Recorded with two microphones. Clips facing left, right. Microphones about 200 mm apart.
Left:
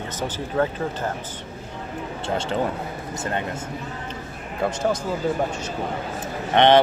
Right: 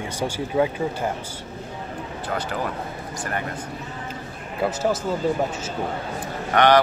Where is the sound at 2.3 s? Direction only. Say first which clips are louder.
Left 3 dB; 25° left (ahead or behind).